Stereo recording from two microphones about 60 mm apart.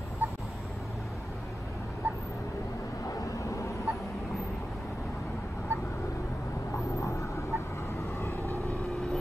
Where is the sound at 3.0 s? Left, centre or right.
Left.